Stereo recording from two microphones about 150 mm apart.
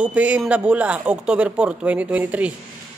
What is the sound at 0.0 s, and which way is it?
A man's voice, 10° right (ahead or behind).